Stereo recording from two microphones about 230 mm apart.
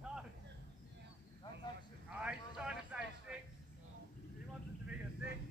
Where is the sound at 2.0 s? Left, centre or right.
Centre.